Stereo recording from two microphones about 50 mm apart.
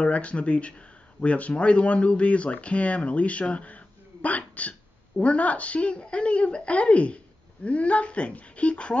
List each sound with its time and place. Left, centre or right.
0.0 s speech: left